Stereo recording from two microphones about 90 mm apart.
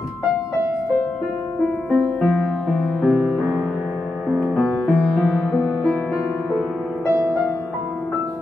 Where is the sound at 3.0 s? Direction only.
15° right (ahead or behind).